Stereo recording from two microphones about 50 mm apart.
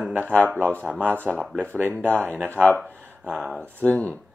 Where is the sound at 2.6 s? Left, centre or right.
Centre.